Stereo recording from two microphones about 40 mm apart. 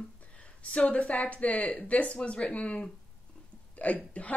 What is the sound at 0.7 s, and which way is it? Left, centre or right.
Speech, left.